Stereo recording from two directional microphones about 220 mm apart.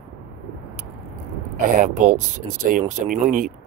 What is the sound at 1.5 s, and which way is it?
Speech, 35° right (ahead or behind).